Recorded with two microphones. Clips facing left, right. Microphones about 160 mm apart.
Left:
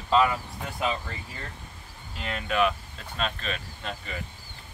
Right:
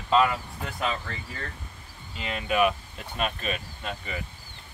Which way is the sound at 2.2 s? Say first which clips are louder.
Right 1 dB; 10° right (ahead or behind).